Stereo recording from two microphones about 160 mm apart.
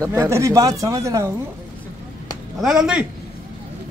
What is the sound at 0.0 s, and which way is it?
Speech, 15° right (ahead or behind).